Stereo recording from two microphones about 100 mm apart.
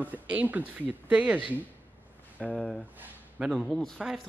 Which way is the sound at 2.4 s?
10° left (ahead or behind).